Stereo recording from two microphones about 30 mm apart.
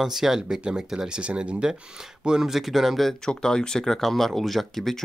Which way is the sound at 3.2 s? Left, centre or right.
Left.